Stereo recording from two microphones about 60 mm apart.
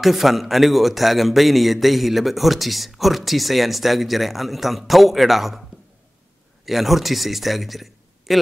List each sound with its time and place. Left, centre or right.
0.0 s a man's voice: centre
6.6 s speech: centre